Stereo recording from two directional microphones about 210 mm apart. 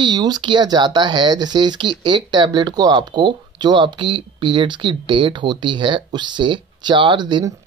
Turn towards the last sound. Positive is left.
turn(degrees=-20)  # may be behind; listen again after turning